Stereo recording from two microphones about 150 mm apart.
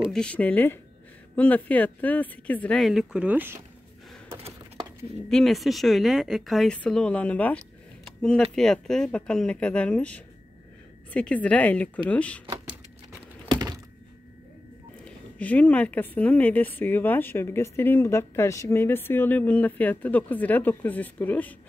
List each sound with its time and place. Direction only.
0.1 s speech: 5° left (ahead or behind)
2.8 s speech: centre (ahead or behind)
4.3 s a sound: 40° right (ahead or behind)
5.3 s speech: centre (ahead or behind)
13.5 s thunk: 25° right (ahead or behind)
15.3 s speech: 10° left (ahead or behind)